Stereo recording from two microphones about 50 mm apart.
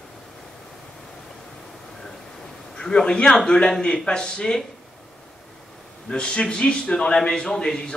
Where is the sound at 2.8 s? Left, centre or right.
Centre.